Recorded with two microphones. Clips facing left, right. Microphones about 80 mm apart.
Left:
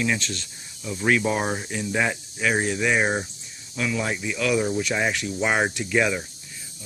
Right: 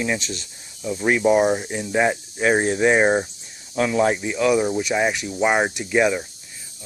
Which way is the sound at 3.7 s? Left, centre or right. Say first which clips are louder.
Right 7 dB; right.